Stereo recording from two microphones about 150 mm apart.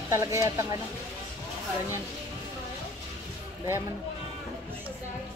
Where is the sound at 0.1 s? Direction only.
20° right (ahead or behind).